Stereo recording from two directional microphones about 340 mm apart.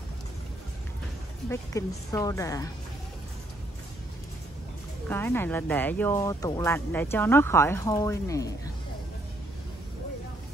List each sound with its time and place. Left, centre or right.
1.5 s speech: centre
5.0 s speech: centre